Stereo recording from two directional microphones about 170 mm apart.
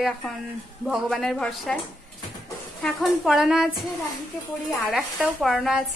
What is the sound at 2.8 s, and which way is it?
Speech, centre (ahead or behind).